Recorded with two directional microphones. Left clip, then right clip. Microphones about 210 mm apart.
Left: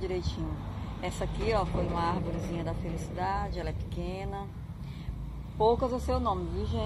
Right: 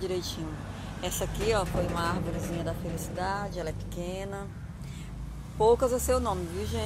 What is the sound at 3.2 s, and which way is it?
Speech, centre (ahead or behind).